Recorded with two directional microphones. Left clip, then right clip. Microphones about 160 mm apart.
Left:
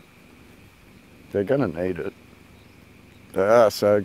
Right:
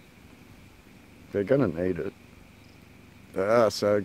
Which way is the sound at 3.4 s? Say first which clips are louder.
Left 6 dB; 25° left (ahead or behind).